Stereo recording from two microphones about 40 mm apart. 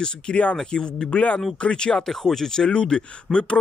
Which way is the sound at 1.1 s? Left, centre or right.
Left.